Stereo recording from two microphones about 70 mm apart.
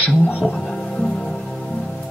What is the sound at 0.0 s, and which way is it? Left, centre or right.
Speech, centre.